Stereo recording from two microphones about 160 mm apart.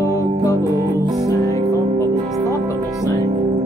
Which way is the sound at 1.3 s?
20° left (ahead or behind).